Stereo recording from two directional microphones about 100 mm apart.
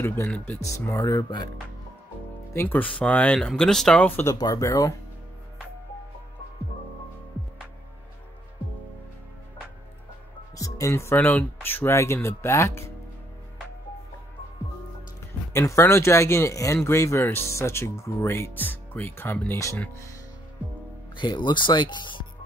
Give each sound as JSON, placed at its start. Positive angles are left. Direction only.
{"t": 0.0, "sound": "speech", "side_deg": 25}
{"t": 2.5, "sound": "speech", "side_deg": 20}
{"t": 4.4, "sound": "speech", "side_deg": 35}
{"t": 10.6, "sound": "speech", "side_deg": 30}
{"t": 15.5, "sound": "speech", "side_deg": 25}
{"t": 21.2, "sound": "speech", "side_deg": 50}